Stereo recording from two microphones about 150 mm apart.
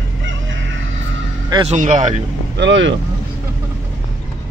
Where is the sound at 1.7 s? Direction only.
50° right (ahead or behind).